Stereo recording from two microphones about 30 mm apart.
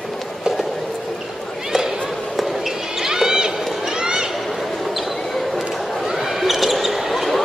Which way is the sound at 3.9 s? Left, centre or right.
Right.